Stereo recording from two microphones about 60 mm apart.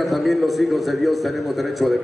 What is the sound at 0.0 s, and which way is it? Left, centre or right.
A man's voice, centre.